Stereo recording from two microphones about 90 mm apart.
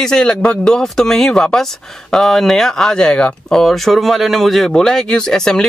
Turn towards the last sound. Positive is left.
turn(degrees=5)  # may be behind; listen again after turning